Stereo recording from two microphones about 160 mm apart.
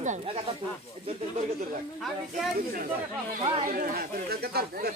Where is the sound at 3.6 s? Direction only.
65° right (ahead or behind).